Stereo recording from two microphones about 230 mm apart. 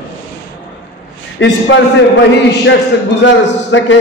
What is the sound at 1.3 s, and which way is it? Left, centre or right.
Speech, left.